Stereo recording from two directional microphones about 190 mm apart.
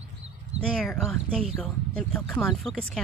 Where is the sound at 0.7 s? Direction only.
Centre (ahead or behind).